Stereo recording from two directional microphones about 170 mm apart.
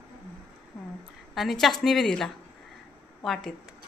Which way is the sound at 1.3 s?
Centre (ahead or behind).